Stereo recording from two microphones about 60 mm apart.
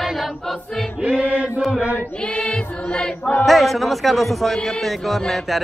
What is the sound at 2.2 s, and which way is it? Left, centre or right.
Music, left.